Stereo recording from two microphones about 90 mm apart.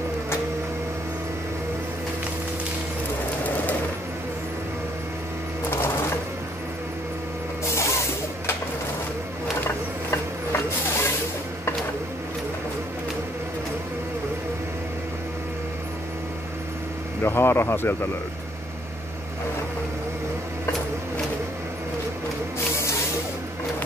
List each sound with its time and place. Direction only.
5.7 s sewing machine: 25° left (ahead or behind)
7.6 s printer: 30° left (ahead or behind)
10.1 s printer: 30° left (ahead or behind)
17.2 s speech: 25° left (ahead or behind)